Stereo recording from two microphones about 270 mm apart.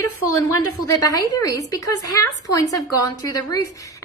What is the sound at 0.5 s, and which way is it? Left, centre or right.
Speech, left.